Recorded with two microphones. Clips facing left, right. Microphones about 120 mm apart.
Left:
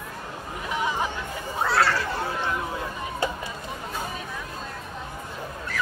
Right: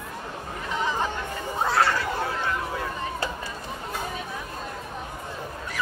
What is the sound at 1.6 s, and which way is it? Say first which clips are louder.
Chatter: even; 20° right (ahead or behind).